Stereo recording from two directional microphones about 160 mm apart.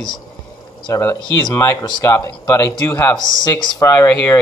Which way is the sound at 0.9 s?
20° left (ahead or behind).